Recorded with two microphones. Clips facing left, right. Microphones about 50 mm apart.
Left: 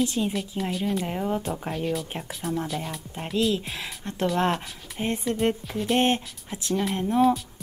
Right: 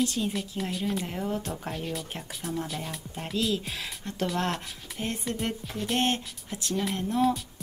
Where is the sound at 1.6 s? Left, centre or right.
Centre.